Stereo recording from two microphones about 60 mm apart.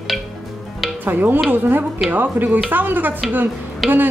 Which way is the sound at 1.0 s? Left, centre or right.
Right.